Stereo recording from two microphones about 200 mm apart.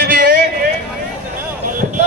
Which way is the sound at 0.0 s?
50° right (ahead or behind).